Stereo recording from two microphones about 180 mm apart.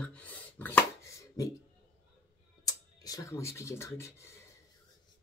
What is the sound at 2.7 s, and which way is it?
Speech, 20° left (ahead or behind).